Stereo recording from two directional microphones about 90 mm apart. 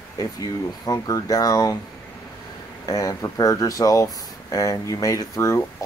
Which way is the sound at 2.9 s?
40° left (ahead or behind).